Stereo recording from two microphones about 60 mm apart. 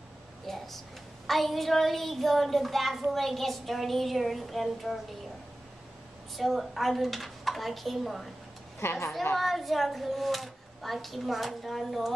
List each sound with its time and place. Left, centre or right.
0.5 s a woman's voice: centre
6.3 s a woman's voice: centre
8.8 s a woman's voice: left
9.4 s a woman's voice: centre